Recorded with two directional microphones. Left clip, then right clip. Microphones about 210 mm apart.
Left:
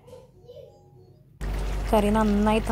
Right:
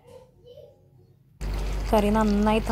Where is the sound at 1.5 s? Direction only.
Centre (ahead or behind).